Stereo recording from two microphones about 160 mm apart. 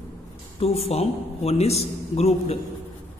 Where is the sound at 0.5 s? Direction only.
40° left (ahead or behind).